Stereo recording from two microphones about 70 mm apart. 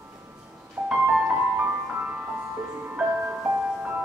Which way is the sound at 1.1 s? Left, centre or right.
Centre.